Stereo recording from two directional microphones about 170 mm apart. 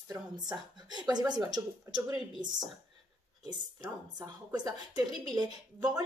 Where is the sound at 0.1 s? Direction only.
25° right (ahead or behind).